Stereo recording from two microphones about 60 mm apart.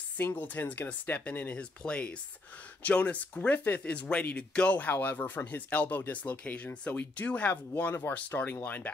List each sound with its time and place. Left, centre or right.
0.2 s speech: left